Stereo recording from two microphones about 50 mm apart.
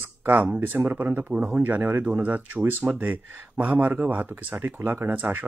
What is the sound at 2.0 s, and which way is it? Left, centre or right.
Speech, right.